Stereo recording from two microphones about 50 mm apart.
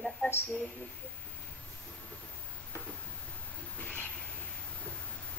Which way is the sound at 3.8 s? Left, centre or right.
Left.